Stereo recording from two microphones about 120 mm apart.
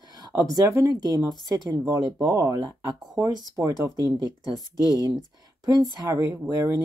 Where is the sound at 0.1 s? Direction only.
30° right (ahead or behind).